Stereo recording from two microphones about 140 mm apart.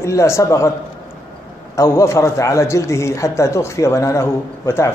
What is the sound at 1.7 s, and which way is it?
Speech, 20° left (ahead or behind).